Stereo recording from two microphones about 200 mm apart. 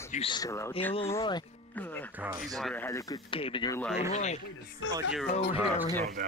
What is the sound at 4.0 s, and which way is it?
Speech, 35° left (ahead or behind).